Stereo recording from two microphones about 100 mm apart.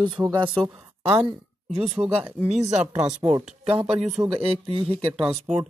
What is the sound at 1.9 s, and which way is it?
Speech, 85° right.